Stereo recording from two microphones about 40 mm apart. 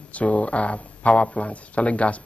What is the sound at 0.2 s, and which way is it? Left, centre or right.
Speech, left.